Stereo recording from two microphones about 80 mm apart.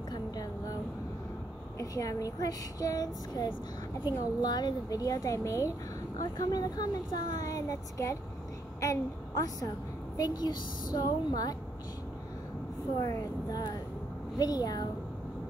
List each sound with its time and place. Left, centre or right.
0.1 s a sound: left
1.8 s speech: left
6.3 s a woman's voice: left
13.0 s a woman's voice: left